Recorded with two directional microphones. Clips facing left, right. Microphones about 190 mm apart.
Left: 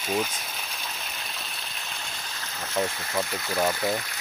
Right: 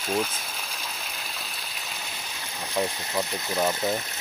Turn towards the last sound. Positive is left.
turn(degrees=-15)  # may be behind; listen again after turning